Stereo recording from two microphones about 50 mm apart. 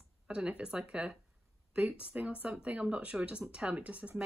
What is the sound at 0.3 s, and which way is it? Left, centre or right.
Speech, right.